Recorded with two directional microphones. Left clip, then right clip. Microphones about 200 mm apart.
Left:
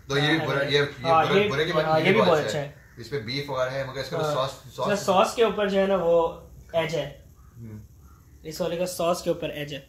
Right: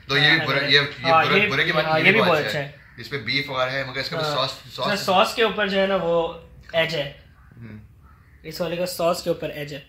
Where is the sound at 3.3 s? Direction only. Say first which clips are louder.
Right 5 dB; 10° left (ahead or behind).